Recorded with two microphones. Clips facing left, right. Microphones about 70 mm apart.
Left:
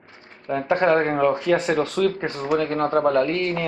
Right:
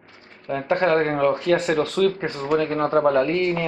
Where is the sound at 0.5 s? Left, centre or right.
Centre.